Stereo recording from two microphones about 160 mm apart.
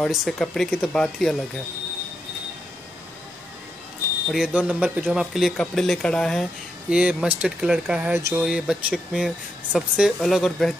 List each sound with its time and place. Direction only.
0.0 s speech: centre (ahead or behind)
4.3 s speech: 5° right (ahead or behind)
6.9 s speech: 5° right (ahead or behind)
8.2 s speech: 20° right (ahead or behind)
8.5 s speech: 5° right (ahead or behind)